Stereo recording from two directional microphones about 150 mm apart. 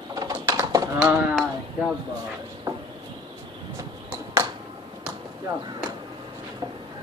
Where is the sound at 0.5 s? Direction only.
25° right (ahead or behind).